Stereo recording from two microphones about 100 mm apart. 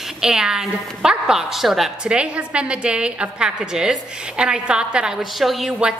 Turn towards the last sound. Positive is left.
turn(degrees=0)  # may be behind; listen again after turning